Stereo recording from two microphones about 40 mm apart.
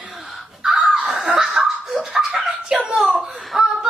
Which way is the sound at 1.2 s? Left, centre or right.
Centre.